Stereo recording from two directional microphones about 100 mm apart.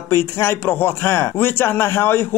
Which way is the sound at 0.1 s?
25° left (ahead or behind).